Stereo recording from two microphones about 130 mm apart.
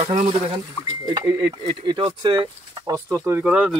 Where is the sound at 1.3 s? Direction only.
20° right (ahead or behind).